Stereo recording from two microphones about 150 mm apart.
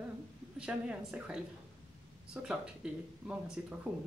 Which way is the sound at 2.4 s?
5° right (ahead or behind).